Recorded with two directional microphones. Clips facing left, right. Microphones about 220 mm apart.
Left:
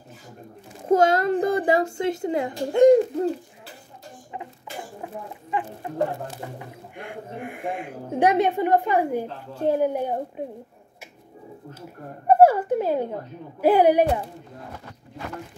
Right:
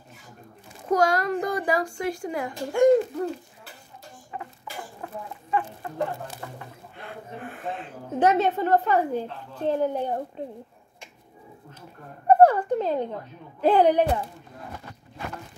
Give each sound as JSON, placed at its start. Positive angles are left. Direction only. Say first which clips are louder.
{"t": 0.8, "sound": "a child's voice", "louder": "left 4 dB", "side_deg": 25}
{"t": 5.0, "sound": "a child's voice", "louder": "left 2 dB", "side_deg": 15}
{"t": 12.3, "sound": "a woman's voice", "louder": "left 1 dB", "side_deg": 10}